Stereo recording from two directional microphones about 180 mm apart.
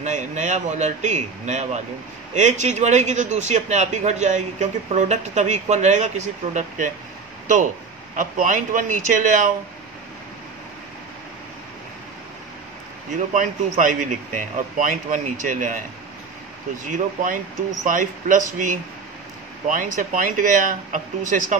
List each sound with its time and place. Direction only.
0.0 s a man's voice: 40° right (ahead or behind)
8.2 s speech: 45° right (ahead or behind)
13.3 s speech: 45° right (ahead or behind)
16.8 s speech: 45° right (ahead or behind)